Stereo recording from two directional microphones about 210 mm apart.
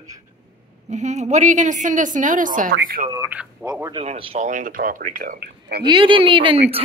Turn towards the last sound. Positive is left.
turn(degrees=-25)  # may be behind; listen again after turning